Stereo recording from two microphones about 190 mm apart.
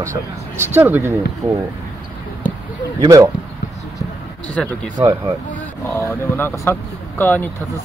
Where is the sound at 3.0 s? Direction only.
15° right (ahead or behind).